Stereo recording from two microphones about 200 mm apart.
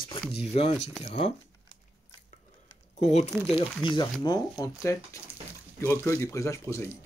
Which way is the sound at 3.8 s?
25° left (ahead or behind).